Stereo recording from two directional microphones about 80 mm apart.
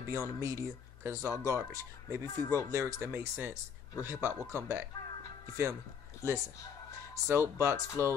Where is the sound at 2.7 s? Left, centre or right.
Right.